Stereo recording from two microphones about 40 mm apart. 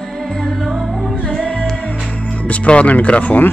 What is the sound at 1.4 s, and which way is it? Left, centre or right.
Music, left.